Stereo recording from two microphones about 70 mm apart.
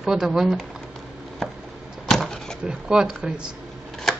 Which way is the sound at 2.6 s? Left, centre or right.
Centre.